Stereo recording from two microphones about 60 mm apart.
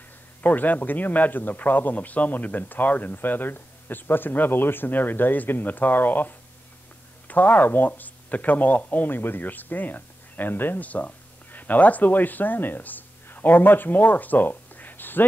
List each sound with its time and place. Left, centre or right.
0.4 s a man's voice: left